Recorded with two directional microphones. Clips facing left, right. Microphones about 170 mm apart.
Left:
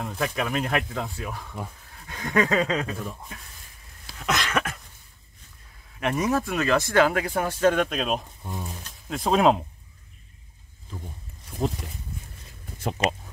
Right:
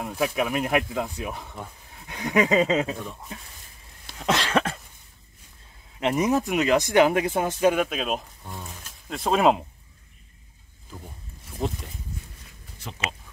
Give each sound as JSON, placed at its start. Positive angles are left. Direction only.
{"t": 0.0, "sound": "speech", "side_deg": -10}
{"t": 3.0, "sound": "speech", "side_deg": 0}
{"t": 4.2, "sound": "a sound", "side_deg": -30}
{"t": 5.9, "sound": "speech", "side_deg": -20}
{"t": 7.7, "sound": "speech", "side_deg": -5}
{"t": 11.6, "sound": "speech", "side_deg": 0}
{"t": 12.8, "sound": "speech", "side_deg": 50}